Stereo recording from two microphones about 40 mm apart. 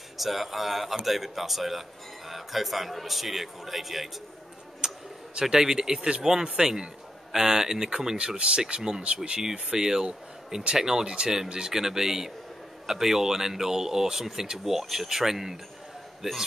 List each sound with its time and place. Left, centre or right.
0.2 s speech: centre
4.8 s a sound: centre
6.2 s speech: centre
8.2 s speech: right
9.7 s speech: centre